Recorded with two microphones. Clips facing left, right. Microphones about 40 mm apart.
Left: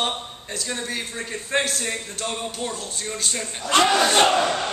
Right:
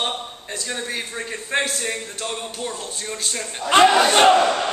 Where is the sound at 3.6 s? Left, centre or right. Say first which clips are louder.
Right 4 dB; centre.